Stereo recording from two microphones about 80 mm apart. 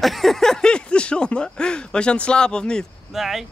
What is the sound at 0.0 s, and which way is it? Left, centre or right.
Speech, centre.